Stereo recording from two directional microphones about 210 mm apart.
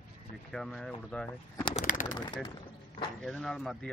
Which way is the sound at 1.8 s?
40° left (ahead or behind).